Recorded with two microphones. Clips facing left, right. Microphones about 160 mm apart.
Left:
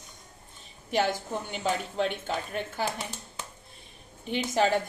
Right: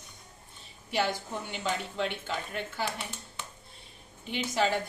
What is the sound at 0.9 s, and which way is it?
A woman's voice, 45° left (ahead or behind).